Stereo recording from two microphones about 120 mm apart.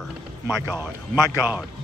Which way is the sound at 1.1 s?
30° left (ahead or behind).